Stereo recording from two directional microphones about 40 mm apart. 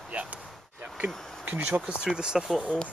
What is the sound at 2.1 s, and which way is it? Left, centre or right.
Speech, centre.